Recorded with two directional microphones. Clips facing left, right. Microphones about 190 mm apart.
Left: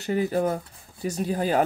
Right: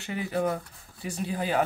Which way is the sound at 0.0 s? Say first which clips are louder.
Left 5 dB; 40° left (ahead or behind).